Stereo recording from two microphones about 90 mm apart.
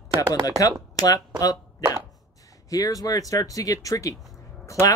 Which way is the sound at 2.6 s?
40° left (ahead or behind).